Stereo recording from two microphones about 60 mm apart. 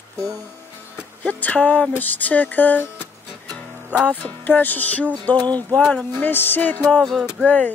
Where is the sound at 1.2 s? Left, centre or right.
Left.